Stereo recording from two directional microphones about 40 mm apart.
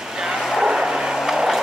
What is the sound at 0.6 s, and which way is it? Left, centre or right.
Vehicle, centre.